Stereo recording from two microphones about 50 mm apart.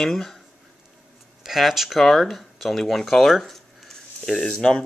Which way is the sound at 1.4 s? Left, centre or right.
Centre.